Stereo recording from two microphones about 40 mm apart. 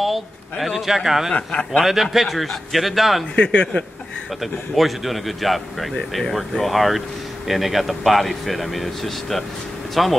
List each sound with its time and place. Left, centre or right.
0.0 s speech: centre
1.3 s a man's voice: left
2.1 s speech: centre
3.3 s a man's voice: left
4.4 s speech: centre